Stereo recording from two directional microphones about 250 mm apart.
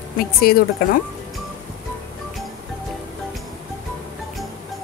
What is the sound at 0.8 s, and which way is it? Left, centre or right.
Speech, left.